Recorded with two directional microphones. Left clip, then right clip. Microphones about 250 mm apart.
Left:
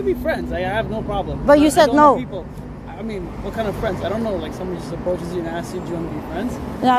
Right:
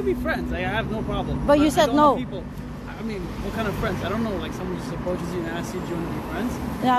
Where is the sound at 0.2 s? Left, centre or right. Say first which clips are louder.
Left 4 dB; centre.